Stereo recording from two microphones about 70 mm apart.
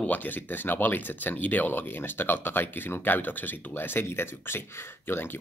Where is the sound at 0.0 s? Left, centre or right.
Left.